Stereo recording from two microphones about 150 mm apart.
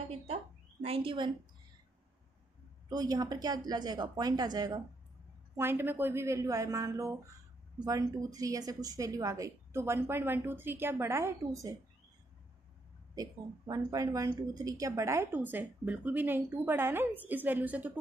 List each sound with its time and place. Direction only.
0.8 s speech: 40° right (ahead or behind)
2.9 s a woman's voice: 25° right (ahead or behind)
5.6 s a woman's voice: 15° right (ahead or behind)
13.1 s a woman's voice: 25° right (ahead or behind)